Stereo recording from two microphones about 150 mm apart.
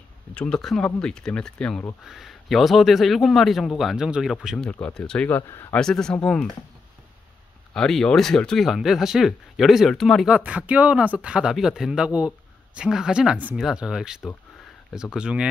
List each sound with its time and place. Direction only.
0.3 s speech: 5° left (ahead or behind)
4.6 s speech: 10° left (ahead or behind)
5.5 s speech: 20° left (ahead or behind)
5.8 s speech: 5° left (ahead or behind)
7.7 s speech: 5° left (ahead or behind)